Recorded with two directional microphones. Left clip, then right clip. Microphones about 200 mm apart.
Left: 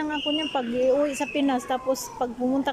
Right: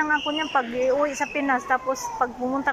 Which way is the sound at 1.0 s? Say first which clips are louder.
Right 1 dB; 40° left (ahead or behind).